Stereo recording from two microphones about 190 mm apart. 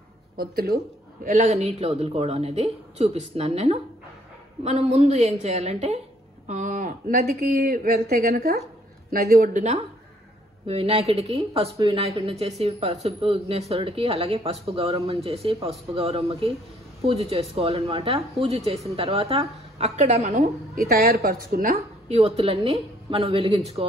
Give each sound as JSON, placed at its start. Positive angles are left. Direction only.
{"t": 0.4, "sound": "a woman's voice", "side_deg": -55}
{"t": 1.2, "sound": "a woman's voice", "side_deg": -40}
{"t": 22.1, "sound": "speech", "side_deg": -35}